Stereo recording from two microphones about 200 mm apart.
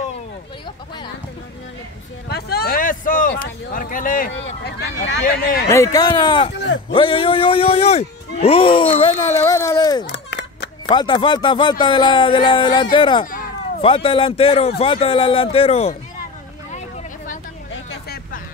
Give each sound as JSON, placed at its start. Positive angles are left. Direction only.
{"t": 2.2, "sound": "a sound", "side_deg": 50}
{"t": 3.7, "sound": "speech", "side_deg": 45}
{"t": 4.3, "sound": "speech", "side_deg": 55}
{"t": 5.7, "sound": "speech", "side_deg": 15}
{"t": 6.5, "sound": "a man's voice", "side_deg": 60}
{"t": 6.9, "sound": "speech", "side_deg": 25}
{"t": 10.0, "sound": "a sound", "side_deg": 60}
{"t": 10.9, "sound": "speech", "side_deg": 25}
{"t": 13.2, "sound": "a sound", "side_deg": 45}
{"t": 13.7, "sound": "speech", "side_deg": 30}
{"t": 16.7, "sound": "vehicle", "side_deg": 35}